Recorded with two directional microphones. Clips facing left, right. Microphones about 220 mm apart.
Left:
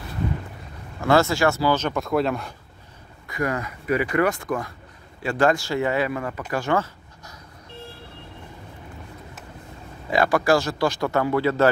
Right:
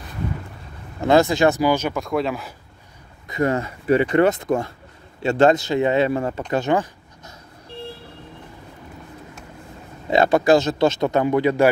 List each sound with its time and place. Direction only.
1.0 s speech: 20° right (ahead or behind)
2.0 s speech: centre (ahead or behind)
3.3 s speech: 25° right (ahead or behind)
6.5 s a sound: 20° right (ahead or behind)
10.0 s speech: 25° right (ahead or behind)